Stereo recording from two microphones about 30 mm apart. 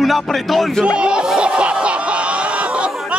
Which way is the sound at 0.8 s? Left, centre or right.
Right.